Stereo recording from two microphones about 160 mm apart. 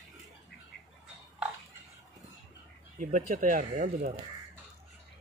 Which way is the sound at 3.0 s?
60° right (ahead or behind).